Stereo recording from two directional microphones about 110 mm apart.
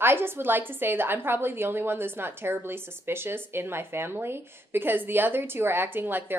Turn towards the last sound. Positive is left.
turn(degrees=-20)  # may be behind; listen again after turning